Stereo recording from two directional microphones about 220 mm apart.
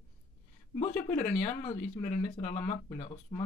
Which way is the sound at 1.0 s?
35° left (ahead or behind).